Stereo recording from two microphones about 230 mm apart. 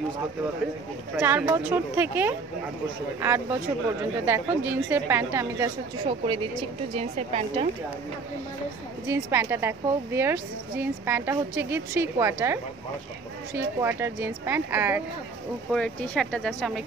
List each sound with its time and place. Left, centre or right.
1.1 s a woman's voice: centre
6.0 s a woman's voice: right
9.0 s a woman's voice: centre
13.7 s a woman's voice: centre
15.7 s speech: centre